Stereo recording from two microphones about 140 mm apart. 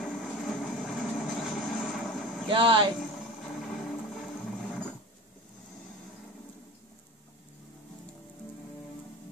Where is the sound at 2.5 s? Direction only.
35° right (ahead or behind).